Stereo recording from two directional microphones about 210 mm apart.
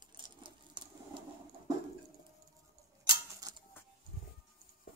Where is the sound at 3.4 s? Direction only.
15° right (ahead or behind).